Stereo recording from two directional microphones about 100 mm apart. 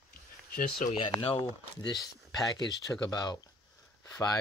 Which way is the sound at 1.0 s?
70° left (ahead or behind).